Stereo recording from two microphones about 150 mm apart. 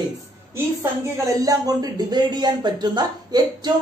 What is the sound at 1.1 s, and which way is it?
A man's voice, 20° right (ahead or behind).